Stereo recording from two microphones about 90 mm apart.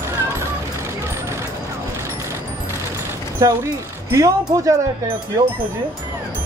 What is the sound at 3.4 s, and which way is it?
Speech, 35° right (ahead or behind).